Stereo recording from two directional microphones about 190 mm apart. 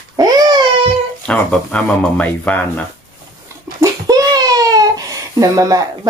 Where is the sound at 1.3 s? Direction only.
5° left (ahead or behind).